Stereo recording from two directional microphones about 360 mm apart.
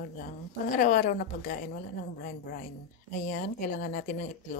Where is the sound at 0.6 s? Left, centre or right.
Left.